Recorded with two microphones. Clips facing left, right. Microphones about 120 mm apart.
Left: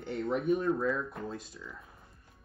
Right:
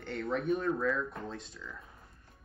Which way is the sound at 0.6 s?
25° left (ahead or behind).